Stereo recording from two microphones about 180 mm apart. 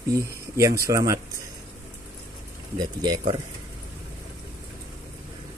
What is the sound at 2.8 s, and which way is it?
Speech, 25° right (ahead or behind).